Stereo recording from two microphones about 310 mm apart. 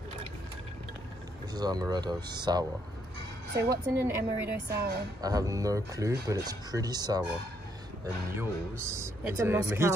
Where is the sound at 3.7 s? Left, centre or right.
Centre.